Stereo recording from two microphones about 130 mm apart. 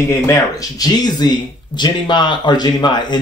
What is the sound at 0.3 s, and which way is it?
Speech, 30° left (ahead or behind).